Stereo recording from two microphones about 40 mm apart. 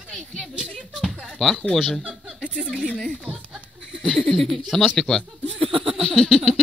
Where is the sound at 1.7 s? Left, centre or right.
Centre.